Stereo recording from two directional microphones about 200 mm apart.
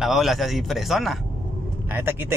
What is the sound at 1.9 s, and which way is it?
Speech, 10° right (ahead or behind).